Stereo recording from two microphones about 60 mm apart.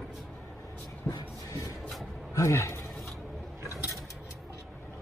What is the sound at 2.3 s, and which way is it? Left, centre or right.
Speech, left.